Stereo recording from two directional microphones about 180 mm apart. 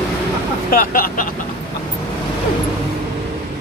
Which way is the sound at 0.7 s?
50° left (ahead or behind).